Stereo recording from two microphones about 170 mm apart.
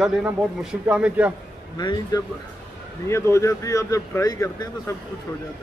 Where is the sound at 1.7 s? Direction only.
25° left (ahead or behind).